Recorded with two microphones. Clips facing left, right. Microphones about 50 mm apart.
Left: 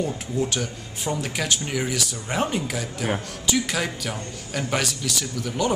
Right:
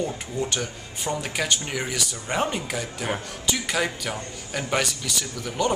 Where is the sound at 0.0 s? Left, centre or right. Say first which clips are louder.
Left 2 dB; centre.